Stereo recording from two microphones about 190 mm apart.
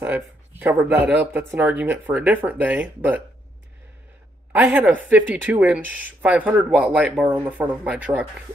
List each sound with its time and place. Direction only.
0.0 s speech: 10° right (ahead or behind)
4.5 s speech: 10° right (ahead or behind)